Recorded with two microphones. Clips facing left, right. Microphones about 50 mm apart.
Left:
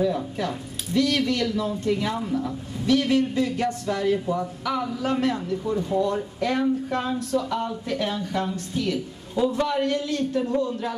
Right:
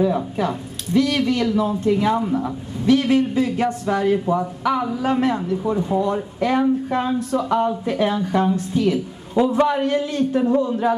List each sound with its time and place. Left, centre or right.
0.0 s a man's voice: centre